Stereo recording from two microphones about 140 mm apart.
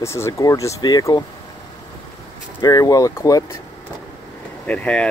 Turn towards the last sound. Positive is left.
turn(degrees=10)  # may be behind; listen again after turning